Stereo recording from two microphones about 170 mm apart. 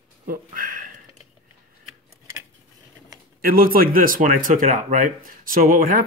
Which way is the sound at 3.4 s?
60° right (ahead or behind).